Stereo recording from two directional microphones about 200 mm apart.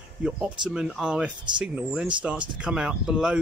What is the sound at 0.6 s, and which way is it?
Speech, 5° right (ahead or behind).